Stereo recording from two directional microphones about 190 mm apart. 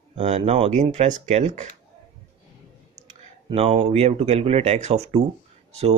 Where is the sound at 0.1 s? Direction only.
30° right (ahead or behind).